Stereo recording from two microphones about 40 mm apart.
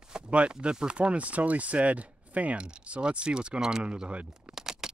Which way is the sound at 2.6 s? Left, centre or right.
Right.